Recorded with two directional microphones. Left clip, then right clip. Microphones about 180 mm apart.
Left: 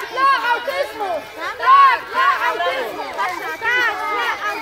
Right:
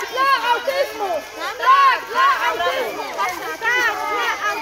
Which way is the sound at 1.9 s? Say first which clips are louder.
Even; 30° right (ahead or behind).